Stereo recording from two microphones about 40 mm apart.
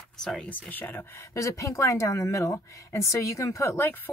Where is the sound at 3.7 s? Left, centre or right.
Left.